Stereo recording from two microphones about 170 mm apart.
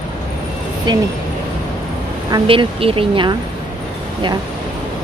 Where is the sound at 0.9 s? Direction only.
25° right (ahead or behind).